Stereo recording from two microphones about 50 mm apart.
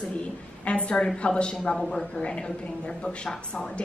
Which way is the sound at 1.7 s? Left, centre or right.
Centre.